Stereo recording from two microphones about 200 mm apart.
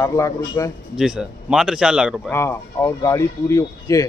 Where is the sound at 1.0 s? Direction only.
Centre (ahead or behind).